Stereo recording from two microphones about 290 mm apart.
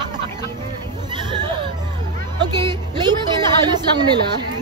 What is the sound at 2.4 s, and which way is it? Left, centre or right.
Speech, centre.